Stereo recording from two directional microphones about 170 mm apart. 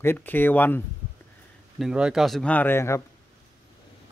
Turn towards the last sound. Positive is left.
turn(degrees=15)  # may be behind; listen again after turning